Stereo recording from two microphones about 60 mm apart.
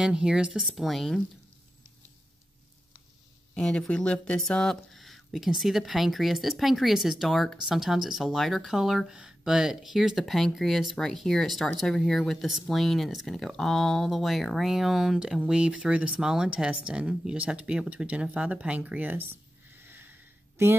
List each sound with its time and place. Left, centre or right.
0.0 s speech: centre
0.7 s speech: centre
3.5 s speech: centre
18.9 s speech: right
19.8 s a sound: right